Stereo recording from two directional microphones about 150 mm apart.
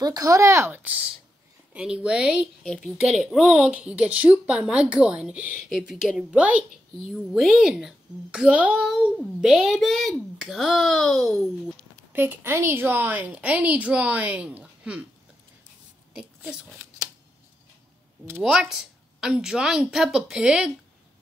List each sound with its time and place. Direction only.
0.0 s a woman's voice: 25° right (ahead or behind); by 11.3 s centre (ahead or behind)
12.1 s a woman's voice: 15° right (ahead or behind)
16.1 s speech: 5° right (ahead or behind)
18.4 s a child's voice: 5° right (ahead or behind)